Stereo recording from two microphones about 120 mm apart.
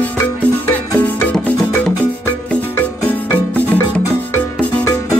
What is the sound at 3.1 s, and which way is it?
Music, 15° left (ahead or behind).